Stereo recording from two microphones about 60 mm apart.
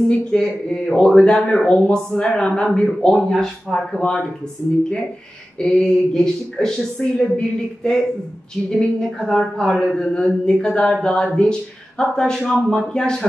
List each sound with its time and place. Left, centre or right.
0.1 s a woman's voice: centre
5.6 s a woman's voice: centre